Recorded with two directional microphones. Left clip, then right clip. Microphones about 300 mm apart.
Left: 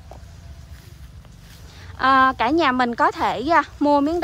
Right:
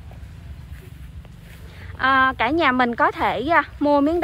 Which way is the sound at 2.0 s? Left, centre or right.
Centre.